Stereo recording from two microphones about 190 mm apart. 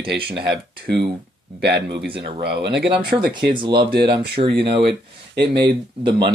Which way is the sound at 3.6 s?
25° right (ahead or behind).